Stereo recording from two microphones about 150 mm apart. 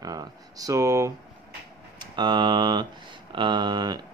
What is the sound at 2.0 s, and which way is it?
Speech, 30° right (ahead or behind).